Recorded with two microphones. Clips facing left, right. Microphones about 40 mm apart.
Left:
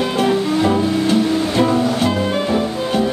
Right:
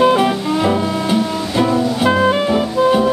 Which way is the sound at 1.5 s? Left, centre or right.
Centre.